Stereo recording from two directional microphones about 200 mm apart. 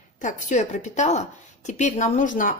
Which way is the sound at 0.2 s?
40° left (ahead or behind).